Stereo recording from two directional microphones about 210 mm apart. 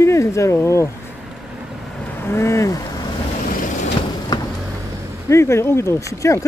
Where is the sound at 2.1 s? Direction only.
10° left (ahead or behind).